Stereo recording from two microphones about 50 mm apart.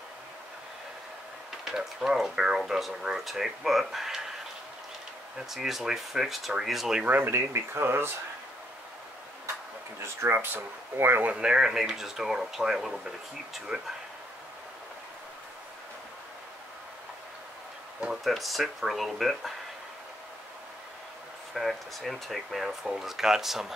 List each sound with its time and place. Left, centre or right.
1.6 s speech: centre
5.5 s speech: centre
7.2 s speech: right
10.2 s speech: right
11.3 s speech: centre
13.7 s speech: centre
18.2 s speech: centre
21.5 s speech: centre